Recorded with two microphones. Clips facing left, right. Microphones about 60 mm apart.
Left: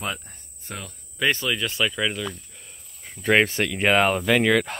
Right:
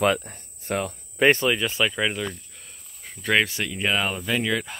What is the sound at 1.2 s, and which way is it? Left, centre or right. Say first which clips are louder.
Speech: right 5 dB; right.